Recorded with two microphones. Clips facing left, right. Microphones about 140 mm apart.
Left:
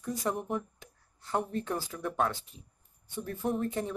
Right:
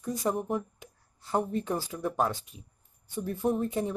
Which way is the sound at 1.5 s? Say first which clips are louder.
Right 3 dB; 15° right (ahead or behind).